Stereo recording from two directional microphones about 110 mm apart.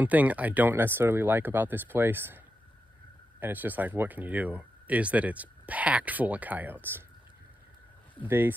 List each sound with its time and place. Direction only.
0.0 s speech: 15° right (ahead or behind)
8.2 s speech: 15° right (ahead or behind)